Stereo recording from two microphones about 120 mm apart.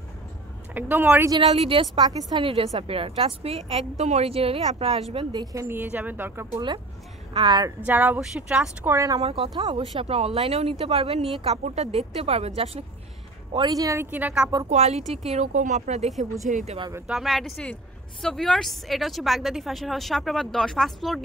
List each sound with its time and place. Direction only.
0.7 s speech: 15° right (ahead or behind)
1.4 s a woman's voice: 50° right (ahead or behind)
2.0 s a woman's voice: 35° right (ahead or behind)
2.4 s a woman's voice: 55° right (ahead or behind)
5.3 s a woman's voice: 30° right (ahead or behind)
7.3 s a woman's voice: 35° right (ahead or behind)
7.8 s speech: 15° right (ahead or behind)
8.9 s a woman's voice: 25° right (ahead or behind)
9.2 s a woman's voice: 50° right (ahead or behind)
13.7 s a woman's voice: 30° right (ahead or behind)
14.1 s speech: 10° right (ahead or behind)
14.7 s speech: 70° right (ahead or behind)
16.4 s speech: 90° right
17.1 s a woman's voice: centre (ahead or behind)